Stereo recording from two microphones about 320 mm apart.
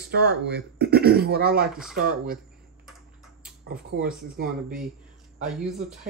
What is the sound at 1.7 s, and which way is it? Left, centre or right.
Speech, centre.